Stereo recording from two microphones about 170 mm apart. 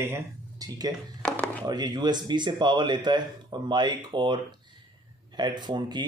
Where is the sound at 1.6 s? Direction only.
25° right (ahead or behind).